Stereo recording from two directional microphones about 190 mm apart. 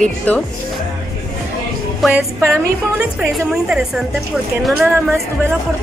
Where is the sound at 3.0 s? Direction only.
5° right (ahead or behind).